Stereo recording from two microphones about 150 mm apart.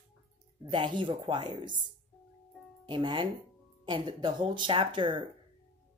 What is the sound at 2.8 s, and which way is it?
Speech, 30° right (ahead or behind).